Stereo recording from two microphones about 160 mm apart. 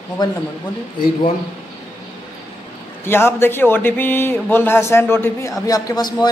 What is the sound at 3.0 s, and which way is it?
A man's voice, 15° left (ahead or behind).